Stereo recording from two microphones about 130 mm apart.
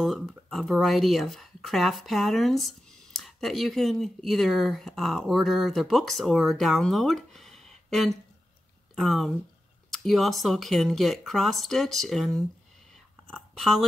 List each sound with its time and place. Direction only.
0.0 s speech: centre (ahead or behind)